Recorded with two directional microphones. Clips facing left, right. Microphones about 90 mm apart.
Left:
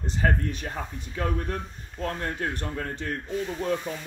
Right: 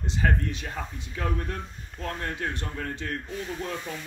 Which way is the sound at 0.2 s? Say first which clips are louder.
Left 1 dB; 45° left (ahead or behind).